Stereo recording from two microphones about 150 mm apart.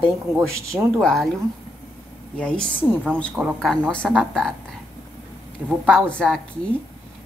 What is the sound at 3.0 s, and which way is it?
Speech, 5° left (ahead or behind).